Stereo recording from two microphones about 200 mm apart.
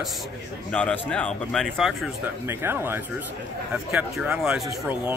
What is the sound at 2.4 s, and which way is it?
Speech, 10° right (ahead or behind).